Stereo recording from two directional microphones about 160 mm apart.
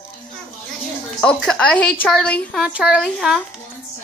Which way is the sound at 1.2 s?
5° left (ahead or behind).